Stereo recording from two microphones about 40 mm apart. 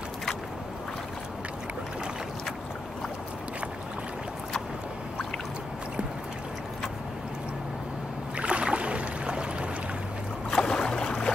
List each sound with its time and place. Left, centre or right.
8.4 s boat: right
10.5 s boat: centre